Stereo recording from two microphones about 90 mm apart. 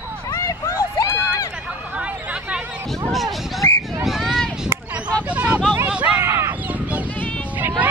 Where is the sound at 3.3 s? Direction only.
Centre (ahead or behind).